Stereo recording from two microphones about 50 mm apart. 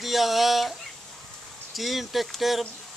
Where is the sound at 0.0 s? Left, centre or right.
Centre.